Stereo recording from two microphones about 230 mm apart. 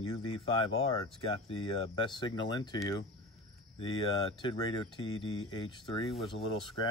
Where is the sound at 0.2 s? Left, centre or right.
Left.